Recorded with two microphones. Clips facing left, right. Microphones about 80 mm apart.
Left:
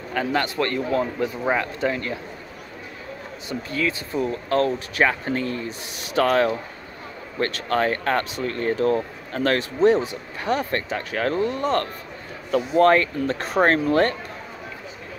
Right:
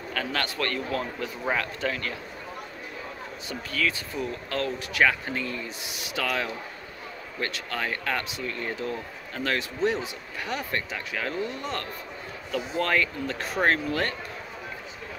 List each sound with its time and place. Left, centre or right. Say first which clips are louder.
0.1 s speech: left 7 dB; left
3.4 s speech: left 4 dB; left
4.2 s speech: left 9 dB; left